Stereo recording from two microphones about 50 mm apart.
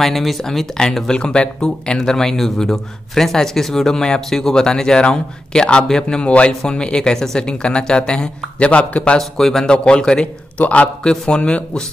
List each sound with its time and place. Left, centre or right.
0.0 s speech: centre
0.9 s speech: centre
9.2 s speech: centre
9.7 s a man's voice: centre
10.6 s a man's voice: left
11.1 s a man's voice: left